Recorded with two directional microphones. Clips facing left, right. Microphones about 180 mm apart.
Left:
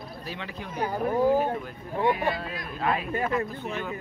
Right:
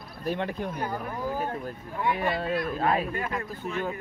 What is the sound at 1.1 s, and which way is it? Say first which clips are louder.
Speech: left 8 dB; 20° left (ahead or behind).